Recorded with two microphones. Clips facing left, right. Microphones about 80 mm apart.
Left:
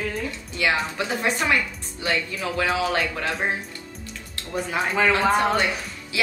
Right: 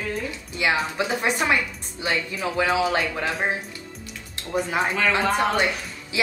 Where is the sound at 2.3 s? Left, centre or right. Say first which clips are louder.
Right 1 dB; right.